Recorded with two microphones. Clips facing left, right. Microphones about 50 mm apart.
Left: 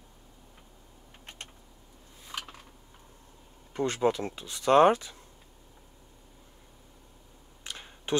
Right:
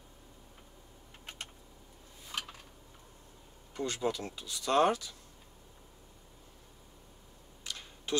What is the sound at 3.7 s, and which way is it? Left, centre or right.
Speech, left.